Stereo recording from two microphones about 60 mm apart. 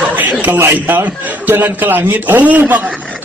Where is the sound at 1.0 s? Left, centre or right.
Right.